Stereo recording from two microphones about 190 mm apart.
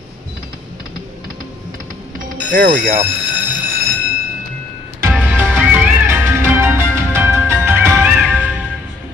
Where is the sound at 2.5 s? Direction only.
45° right (ahead or behind).